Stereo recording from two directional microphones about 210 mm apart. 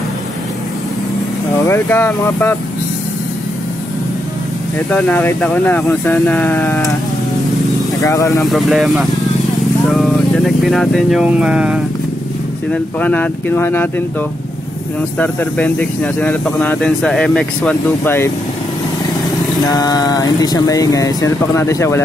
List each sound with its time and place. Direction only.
1.7 s speech: 10° left (ahead or behind)
4.9 s speech: 5° left (ahead or behind)
8.0 s speech: 15° left (ahead or behind)
8.5 s speech: centre (ahead or behind)
12.7 s speech: 5° left (ahead or behind)
15.1 s speech: 5° left (ahead or behind)
19.7 s speech: 20° left (ahead or behind)